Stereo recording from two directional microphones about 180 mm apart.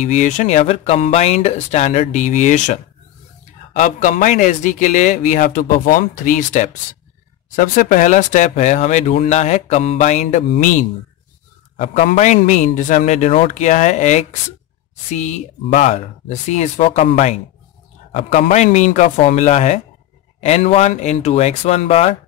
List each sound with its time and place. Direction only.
0.0 s a man's voice: 45° left (ahead or behind)
18.5 s speech: 40° left (ahead or behind)